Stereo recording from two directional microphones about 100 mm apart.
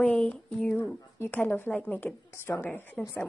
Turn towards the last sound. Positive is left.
turn(degrees=20)  # may be behind; listen again after turning